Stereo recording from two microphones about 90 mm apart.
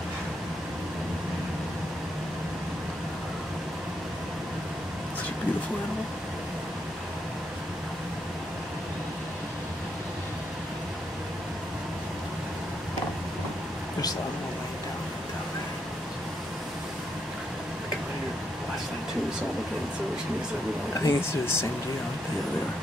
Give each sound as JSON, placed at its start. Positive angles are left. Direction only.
{"t": 21.0, "sound": "speech", "side_deg": 30}